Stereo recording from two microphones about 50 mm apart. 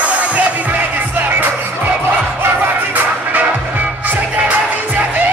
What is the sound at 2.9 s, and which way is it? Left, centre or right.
Music, right.